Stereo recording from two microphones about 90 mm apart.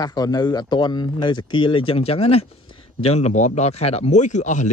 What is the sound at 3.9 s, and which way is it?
Speech, 90° left.